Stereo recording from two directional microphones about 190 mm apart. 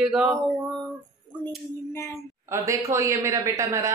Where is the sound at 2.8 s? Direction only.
15° right (ahead or behind).